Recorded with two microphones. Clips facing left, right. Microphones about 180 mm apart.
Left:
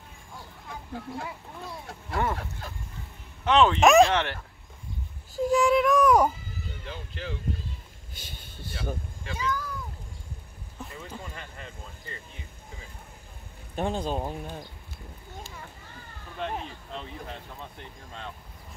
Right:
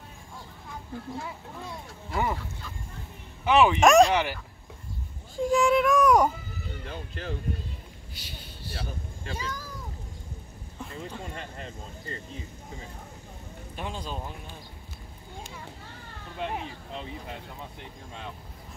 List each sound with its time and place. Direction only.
0.9 s speech: 60° left (ahead or behind)
1.7 s a child's voice: 5° right (ahead or behind)
3.4 s speech: 10° right (ahead or behind)
3.8 s a child's voice: centre (ahead or behind)
4.1 s speech: 10° right (ahead or behind)
5.3 s a child's voice: centre (ahead or behind)
6.8 s speech: 45° right (ahead or behind)
8.2 s speech: 50° left (ahead or behind)
9.2 s speech: 35° right (ahead or behind)
11.0 s speech: 35° right (ahead or behind)
13.7 s speech: 45° left (ahead or behind)
16.3 s speech: 10° right (ahead or behind)